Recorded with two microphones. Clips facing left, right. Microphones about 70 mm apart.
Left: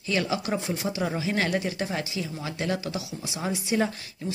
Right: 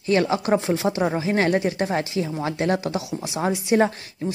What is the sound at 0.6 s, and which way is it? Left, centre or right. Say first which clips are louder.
Speech: right 8 dB; right.